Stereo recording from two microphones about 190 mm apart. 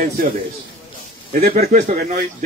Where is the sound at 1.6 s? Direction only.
35° right (ahead or behind).